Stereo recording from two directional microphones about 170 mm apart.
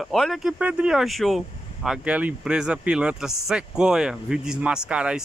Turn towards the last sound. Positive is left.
turn(degrees=-5)  # may be behind; listen again after turning